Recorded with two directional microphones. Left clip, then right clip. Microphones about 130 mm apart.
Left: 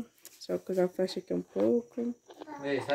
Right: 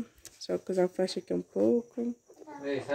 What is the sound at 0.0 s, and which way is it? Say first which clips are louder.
Speech: right 2 dB; 15° right (ahead or behind).